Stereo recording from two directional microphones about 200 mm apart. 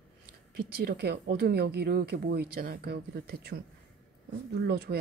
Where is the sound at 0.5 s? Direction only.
50° right (ahead or behind).